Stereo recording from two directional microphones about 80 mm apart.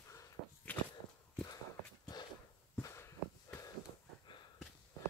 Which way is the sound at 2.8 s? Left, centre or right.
Left.